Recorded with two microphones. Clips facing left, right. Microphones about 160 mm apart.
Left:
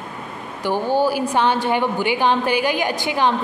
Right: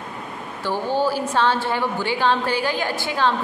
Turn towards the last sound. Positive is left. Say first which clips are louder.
# left 2 dB
turn(degrees=15)  # may be behind; listen again after turning